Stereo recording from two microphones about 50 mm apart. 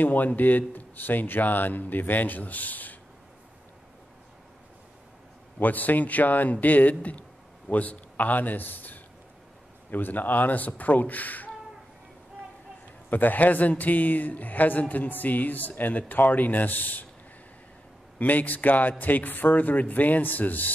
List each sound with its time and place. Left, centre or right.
0.0 s speech: left
5.6 s a man's voice: left
13.1 s speech: left
18.2 s speech: left